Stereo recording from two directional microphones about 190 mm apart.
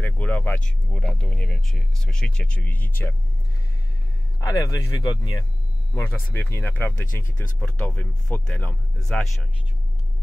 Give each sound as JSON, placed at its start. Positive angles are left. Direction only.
{"t": 0.0, "sound": "vehicle", "side_deg": 5}
{"t": 0.7, "sound": "speech", "side_deg": 5}
{"t": 4.4, "sound": "speech", "side_deg": 15}